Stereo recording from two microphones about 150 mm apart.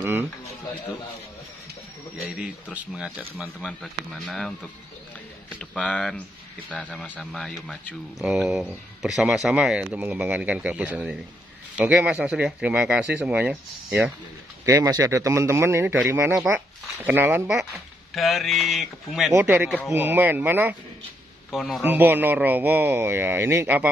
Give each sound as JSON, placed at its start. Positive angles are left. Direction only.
{"t": 0.0, "sound": "a sound", "side_deg": -15}
{"t": 2.2, "sound": "speech", "side_deg": -10}
{"t": 14.6, "sound": "speech", "side_deg": -20}
{"t": 18.1, "sound": "speech", "side_deg": 0}
{"t": 19.3, "sound": "speech", "side_deg": -10}
{"t": 21.5, "sound": "speech", "side_deg": 0}
{"t": 21.8, "sound": "speech", "side_deg": -15}